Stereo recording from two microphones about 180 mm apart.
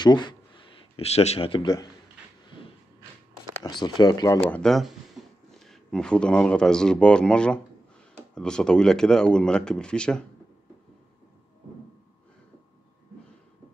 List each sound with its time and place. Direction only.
0.0 s speech: 25° left (ahead or behind)
3.6 s speech: 25° left (ahead or behind)
4.5 s speech: 5° left (ahead or behind)
5.2 s a sound: centre (ahead or behind)
5.5 s speech: centre (ahead or behind)